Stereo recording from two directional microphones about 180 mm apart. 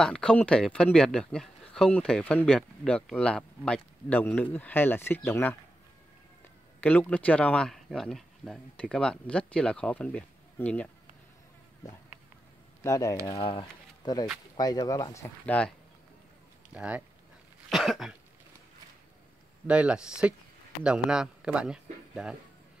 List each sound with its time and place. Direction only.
0.0 s speech: 5° left (ahead or behind)
6.8 s speech: 10° left (ahead or behind)
12.8 s speech: 15° left (ahead or behind)
13.3 s speech: 30° left (ahead or behind)
15.4 s speech: 5° left (ahead or behind)
16.7 s speech: 5° right (ahead or behind)
17.6 s cough: centre (ahead or behind)
19.7 s speech: 5° right (ahead or behind)